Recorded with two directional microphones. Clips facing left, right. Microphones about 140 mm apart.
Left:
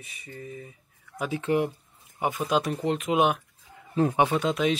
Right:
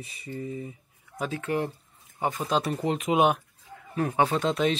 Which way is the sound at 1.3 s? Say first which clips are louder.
Left 4 dB; 20° left (ahead or behind).